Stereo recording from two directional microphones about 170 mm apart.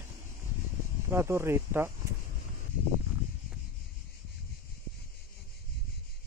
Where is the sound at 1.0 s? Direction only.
15° right (ahead or behind).